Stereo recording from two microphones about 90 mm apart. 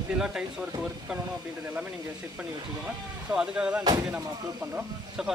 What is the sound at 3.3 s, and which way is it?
Speech, 10° right (ahead or behind).